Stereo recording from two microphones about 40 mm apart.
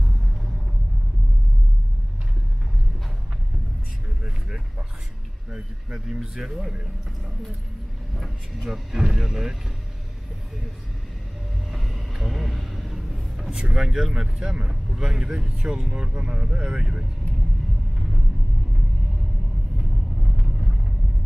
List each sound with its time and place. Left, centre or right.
4.2 s vehicle: centre
5.9 s speech: centre
8.1 s speech: centre
8.9 s speech: centre
11.7 s a sound: centre
13.5 s speech: right
13.7 s speech: centre
16.5 s speech: centre
16.8 s speech: centre
20.4 s vehicle: centre